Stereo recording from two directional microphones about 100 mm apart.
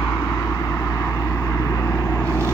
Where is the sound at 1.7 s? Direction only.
30° left (ahead or behind).